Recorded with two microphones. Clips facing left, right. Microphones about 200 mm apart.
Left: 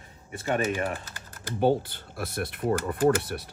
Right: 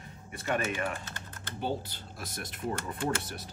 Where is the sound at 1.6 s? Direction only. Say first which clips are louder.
Left 10 dB; 55° left (ahead or behind).